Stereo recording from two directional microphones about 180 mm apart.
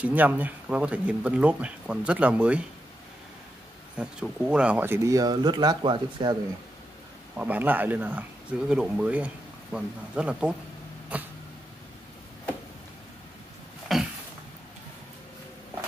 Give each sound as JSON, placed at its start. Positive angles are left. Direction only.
{"t": 0.0, "sound": "speech", "side_deg": -10}
{"t": 3.9, "sound": "speech", "side_deg": -5}
{"t": 7.3, "sound": "speech", "side_deg": -10}
{"t": 13.9, "sound": "a sound", "side_deg": 0}